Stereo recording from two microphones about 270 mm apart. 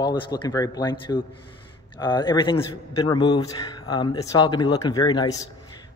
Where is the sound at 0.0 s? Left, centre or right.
Centre.